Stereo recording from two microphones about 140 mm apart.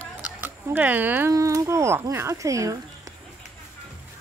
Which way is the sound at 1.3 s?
25° right (ahead or behind).